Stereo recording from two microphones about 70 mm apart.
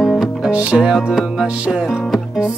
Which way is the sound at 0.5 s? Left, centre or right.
Centre.